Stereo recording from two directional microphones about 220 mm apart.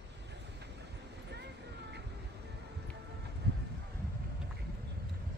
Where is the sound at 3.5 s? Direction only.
45° right (ahead or behind).